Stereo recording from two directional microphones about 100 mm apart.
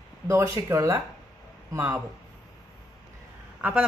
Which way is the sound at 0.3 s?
30° right (ahead or behind).